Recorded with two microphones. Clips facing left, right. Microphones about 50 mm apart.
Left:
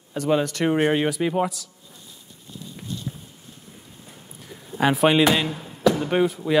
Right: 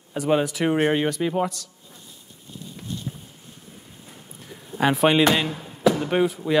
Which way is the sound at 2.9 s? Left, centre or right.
Right.